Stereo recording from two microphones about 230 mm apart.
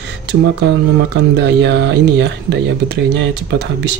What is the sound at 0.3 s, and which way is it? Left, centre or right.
Speech, right.